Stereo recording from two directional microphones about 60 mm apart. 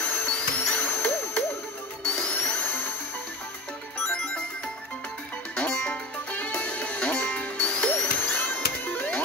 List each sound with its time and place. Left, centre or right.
0.0 s music: left
2.0 s music: centre
4.1 s music: centre
5.6 s music: left